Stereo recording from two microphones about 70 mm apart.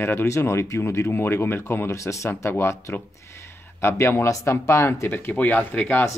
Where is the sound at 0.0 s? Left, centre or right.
Left.